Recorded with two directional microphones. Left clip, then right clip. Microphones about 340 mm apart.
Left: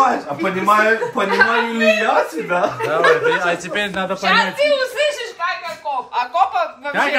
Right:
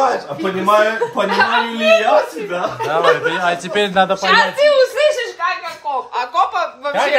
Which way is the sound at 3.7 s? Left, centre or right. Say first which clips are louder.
Right 6 dB; right.